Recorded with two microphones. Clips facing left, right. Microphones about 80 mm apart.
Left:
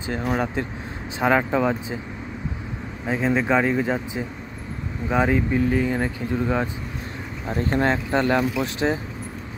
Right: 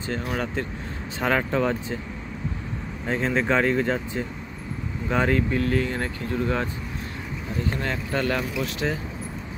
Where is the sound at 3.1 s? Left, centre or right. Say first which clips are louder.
Left 2 dB; centre.